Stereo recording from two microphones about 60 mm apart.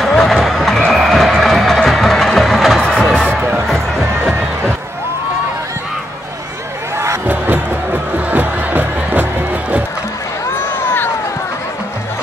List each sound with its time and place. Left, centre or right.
0.1 s music: centre
7.2 s music: right